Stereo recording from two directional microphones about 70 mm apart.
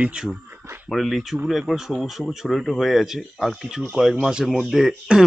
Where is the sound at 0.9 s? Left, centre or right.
Centre.